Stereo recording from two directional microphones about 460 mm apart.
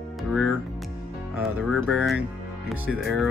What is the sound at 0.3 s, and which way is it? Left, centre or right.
Speech, centre.